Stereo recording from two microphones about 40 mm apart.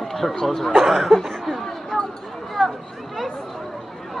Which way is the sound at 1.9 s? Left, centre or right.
Centre.